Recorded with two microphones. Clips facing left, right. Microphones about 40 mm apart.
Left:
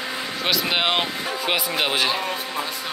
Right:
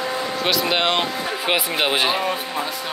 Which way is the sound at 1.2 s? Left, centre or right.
Centre.